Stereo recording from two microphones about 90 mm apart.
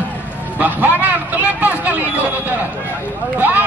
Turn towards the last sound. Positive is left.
turn(degrees=-20)  # may be behind; listen again after turning